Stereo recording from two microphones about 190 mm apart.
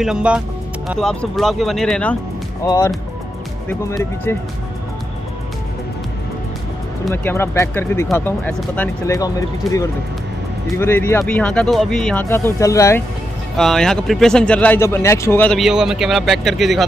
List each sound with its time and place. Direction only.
0.0 s speech: 5° right (ahead or behind)
2.6 s speech: 20° left (ahead or behind)
7.1 s speech: 15° left (ahead or behind)
13.6 s speech: centre (ahead or behind)